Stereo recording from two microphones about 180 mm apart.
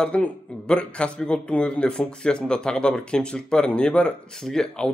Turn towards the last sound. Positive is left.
turn(degrees=5)  # may be behind; listen again after turning